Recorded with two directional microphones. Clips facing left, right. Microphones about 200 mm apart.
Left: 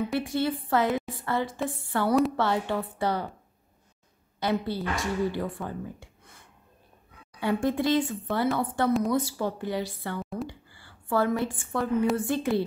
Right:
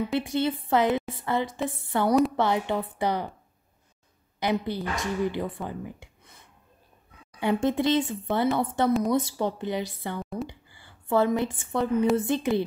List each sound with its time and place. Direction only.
0.1 s a woman's voice: 20° right (ahead or behind)
4.4 s speech: 15° right (ahead or behind)
7.3 s a woman's voice: 20° right (ahead or behind)
10.3 s a sound: 20° right (ahead or behind)
10.7 s a woman's voice: 20° right (ahead or behind)